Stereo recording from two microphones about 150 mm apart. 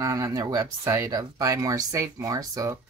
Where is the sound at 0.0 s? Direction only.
20° right (ahead or behind).